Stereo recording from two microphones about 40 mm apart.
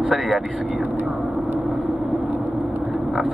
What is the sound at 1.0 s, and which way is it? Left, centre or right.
Vehicle, centre.